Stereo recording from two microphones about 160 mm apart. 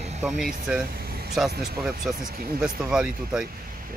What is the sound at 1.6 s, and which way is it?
Speech, 5° right (ahead or behind).